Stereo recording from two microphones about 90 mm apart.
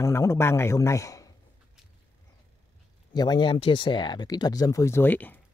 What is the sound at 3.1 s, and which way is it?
Speech, 50° left (ahead or behind).